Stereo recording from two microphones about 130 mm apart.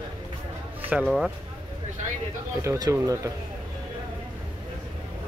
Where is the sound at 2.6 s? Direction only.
25° right (ahead or behind).